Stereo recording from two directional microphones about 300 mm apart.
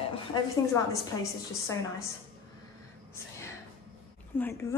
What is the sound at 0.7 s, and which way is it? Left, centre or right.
A woman's voice, centre.